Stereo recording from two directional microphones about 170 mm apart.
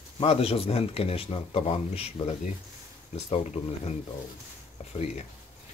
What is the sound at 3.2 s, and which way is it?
Speech, 35° left (ahead or behind).